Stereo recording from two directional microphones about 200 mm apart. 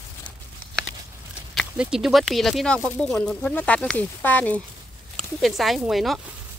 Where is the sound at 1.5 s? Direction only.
5° right (ahead or behind).